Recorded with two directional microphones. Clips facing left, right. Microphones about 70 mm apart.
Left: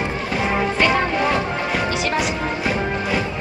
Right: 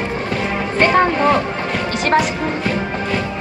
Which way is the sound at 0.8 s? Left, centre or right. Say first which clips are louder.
Right 7 dB; right.